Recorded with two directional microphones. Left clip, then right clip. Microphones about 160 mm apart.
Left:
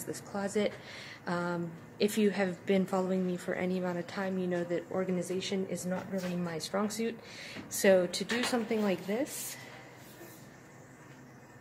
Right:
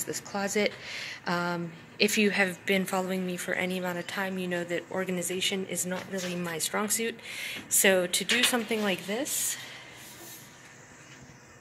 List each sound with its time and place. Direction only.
0.0 s speech: 25° right (ahead or behind)
2.6 s speech: 10° left (ahead or behind); by 9.2 s 5° right (ahead or behind)